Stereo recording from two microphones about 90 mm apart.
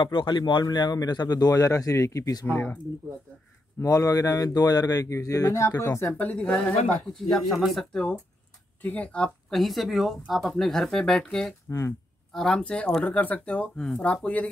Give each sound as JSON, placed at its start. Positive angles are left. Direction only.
{"t": 0.0, "sound": "speech", "side_deg": 65}
{"t": 3.8, "sound": "speech", "side_deg": 40}
{"t": 6.1, "sound": "speech", "side_deg": 15}
{"t": 8.8, "sound": "speech", "side_deg": 15}
{"t": 9.5, "sound": "speech", "side_deg": 0}